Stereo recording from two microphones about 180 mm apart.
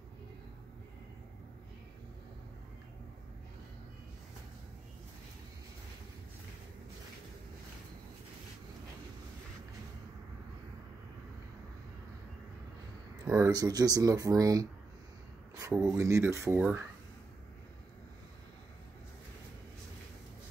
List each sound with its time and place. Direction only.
13.2 s speech: 15° right (ahead or behind)